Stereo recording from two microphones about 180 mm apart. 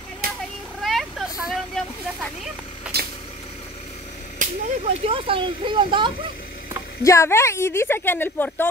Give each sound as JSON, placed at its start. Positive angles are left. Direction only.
{"t": 0.8, "sound": "a sound", "side_deg": 0}
{"t": 2.9, "sound": "vehicle", "side_deg": -60}
{"t": 4.4, "sound": "speech", "side_deg": -35}
{"t": 7.0, "sound": "a woman's voice", "side_deg": 15}